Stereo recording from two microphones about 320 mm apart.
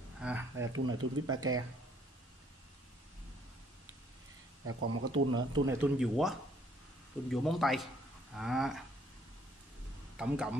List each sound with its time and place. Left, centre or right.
0.2 s a sound: centre
0.6 s speech: right
4.6 s speech: right
5.7 s speech: centre
10.1 s speech: centre